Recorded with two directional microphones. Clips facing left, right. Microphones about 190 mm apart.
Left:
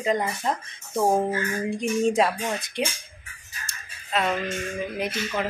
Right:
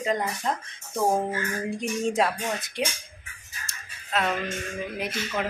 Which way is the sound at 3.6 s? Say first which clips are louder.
Left 1 dB; centre (ahead or behind).